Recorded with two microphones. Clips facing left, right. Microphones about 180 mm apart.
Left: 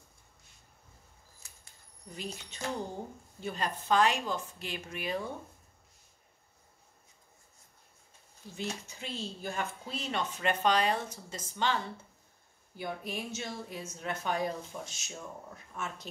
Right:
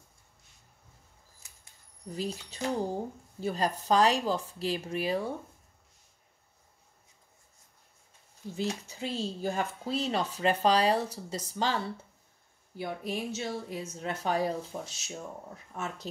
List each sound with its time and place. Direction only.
2.0 s speech: 35° right (ahead or behind)
8.5 s speech: 35° right (ahead or behind)